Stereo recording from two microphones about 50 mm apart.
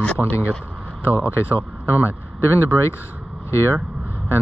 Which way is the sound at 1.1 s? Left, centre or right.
Left.